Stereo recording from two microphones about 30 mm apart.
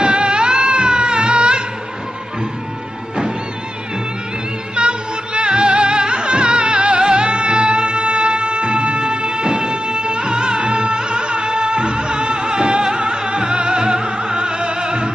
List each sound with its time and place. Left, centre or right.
0.0 s music: right
4.7 s music: right